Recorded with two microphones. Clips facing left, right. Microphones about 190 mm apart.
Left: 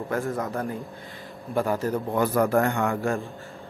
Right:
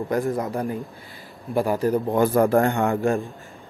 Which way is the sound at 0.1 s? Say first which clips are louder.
Right 3 dB; 15° right (ahead or behind).